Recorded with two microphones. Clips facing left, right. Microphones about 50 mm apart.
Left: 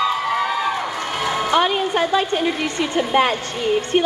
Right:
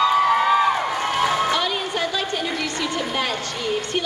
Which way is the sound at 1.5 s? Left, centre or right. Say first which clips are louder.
Left 5 dB; left.